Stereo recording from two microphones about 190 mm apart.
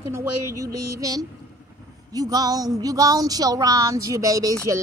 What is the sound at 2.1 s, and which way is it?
Female singing, 20° right (ahead or behind).